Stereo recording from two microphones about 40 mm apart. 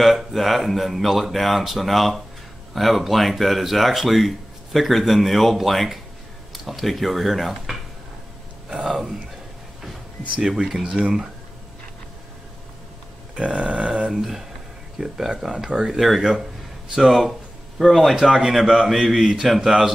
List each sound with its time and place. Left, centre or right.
0.0 s speech: centre
8.8 s speech: centre
10.4 s speech: centre
11.0 s burping: right
13.4 s burping: right
14.1 s speech: centre